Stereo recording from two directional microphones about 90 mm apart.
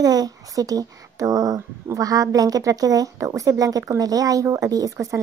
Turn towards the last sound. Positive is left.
turn(degrees=-40)  # may be behind; listen again after turning